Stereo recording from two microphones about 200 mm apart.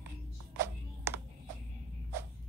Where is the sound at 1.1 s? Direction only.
15° right (ahead or behind).